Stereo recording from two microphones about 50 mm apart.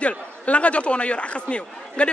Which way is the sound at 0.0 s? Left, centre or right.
Left.